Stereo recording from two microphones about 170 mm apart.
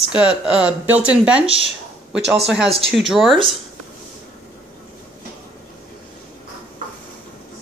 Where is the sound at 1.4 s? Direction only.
35° right (ahead or behind).